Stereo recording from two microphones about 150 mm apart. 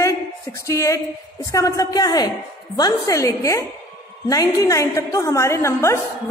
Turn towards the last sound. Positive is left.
turn(degrees=20)  # may be behind; listen again after turning